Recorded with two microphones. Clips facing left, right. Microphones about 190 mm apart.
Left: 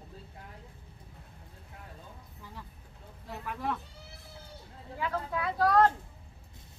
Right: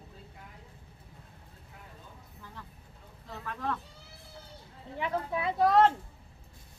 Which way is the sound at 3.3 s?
15° left (ahead or behind).